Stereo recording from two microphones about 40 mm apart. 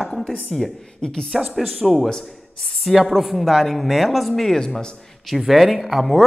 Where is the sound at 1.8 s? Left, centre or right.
Centre.